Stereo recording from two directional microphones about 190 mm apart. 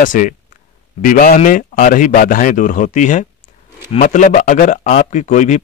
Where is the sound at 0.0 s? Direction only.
45° left (ahead or behind).